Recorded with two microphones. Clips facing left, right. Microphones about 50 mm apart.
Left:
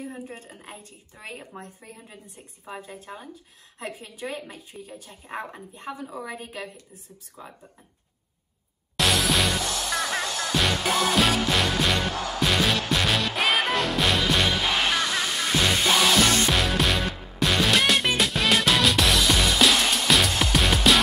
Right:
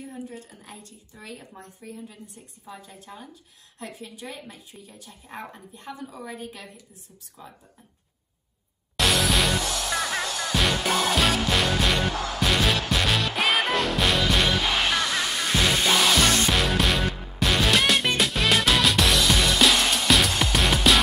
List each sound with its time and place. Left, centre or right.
0.0 s a woman's voice: left
1.8 s speech: left
4.3 s speech: left
5.8 s a woman's voice: left
6.2 s speech: left
8.9 s music: centre